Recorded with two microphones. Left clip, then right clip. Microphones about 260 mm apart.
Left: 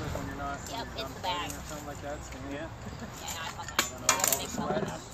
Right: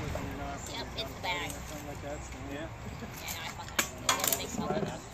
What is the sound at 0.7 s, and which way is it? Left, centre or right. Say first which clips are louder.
Vehicle: left 1 dB; centre.